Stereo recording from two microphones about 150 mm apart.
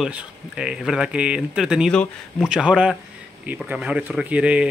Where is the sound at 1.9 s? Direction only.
5° left (ahead or behind).